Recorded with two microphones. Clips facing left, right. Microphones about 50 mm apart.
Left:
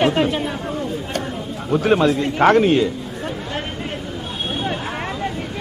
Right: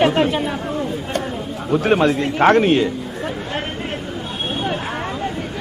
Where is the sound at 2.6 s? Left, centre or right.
Right.